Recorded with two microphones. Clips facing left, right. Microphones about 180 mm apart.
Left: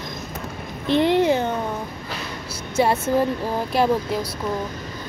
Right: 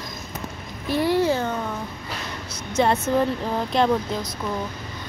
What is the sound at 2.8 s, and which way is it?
Speech, 5° left (ahead or behind).